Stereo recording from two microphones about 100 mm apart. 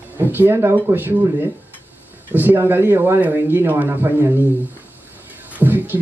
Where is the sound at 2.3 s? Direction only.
20° right (ahead or behind).